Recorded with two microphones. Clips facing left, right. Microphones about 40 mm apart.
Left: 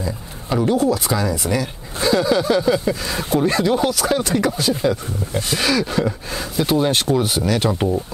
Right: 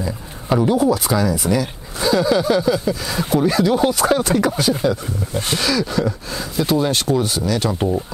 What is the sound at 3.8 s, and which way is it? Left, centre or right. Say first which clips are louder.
Speech: right 3 dB; centre.